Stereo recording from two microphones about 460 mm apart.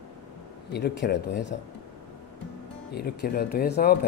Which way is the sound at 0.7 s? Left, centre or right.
Left.